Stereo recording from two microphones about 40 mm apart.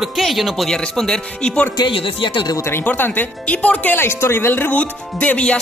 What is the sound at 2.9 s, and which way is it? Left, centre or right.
Music, left.